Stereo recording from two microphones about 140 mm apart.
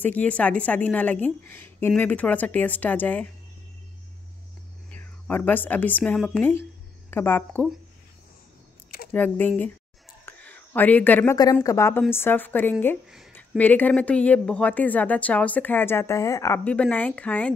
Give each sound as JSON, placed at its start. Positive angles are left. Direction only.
{"t": 0.0, "sound": "a woman's voice", "side_deg": 10}
{"t": 4.9, "sound": "speech", "side_deg": 10}
{"t": 7.1, "sound": "a woman's voice", "side_deg": 15}
{"t": 9.1, "sound": "a woman's voice", "side_deg": 10}
{"t": 10.2, "sound": "a sound", "side_deg": 15}
{"t": 11.6, "sound": "a woman's voice", "side_deg": 20}
{"t": 16.6, "sound": "a woman's voice", "side_deg": 10}